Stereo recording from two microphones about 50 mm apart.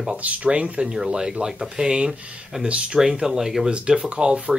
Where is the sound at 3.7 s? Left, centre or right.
Right.